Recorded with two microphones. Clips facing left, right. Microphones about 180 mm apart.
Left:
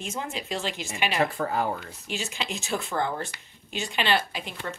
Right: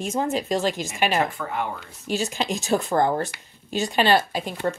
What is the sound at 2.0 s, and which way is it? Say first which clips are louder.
Speech: right 13 dB; 40° right (ahead or behind).